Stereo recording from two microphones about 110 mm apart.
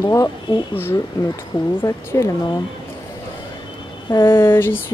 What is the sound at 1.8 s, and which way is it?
Speech, 25° left (ahead or behind).